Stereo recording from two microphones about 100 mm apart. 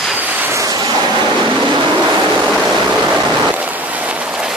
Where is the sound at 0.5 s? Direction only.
40° right (ahead or behind).